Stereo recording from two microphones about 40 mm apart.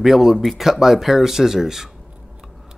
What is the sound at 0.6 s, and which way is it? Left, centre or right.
Speech, centre.